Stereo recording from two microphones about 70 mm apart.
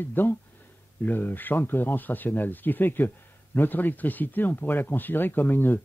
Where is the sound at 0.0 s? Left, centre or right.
Left.